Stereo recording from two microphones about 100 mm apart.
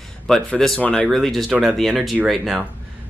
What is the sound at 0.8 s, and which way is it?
Speech, 15° left (ahead or behind).